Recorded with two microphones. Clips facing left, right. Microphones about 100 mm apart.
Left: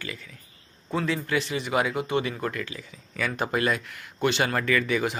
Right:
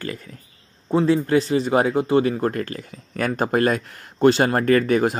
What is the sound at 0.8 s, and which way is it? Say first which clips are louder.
Speech: right 9 dB; 35° right (ahead or behind).